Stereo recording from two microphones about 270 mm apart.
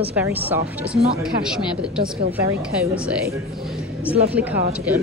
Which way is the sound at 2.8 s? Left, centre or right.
Centre.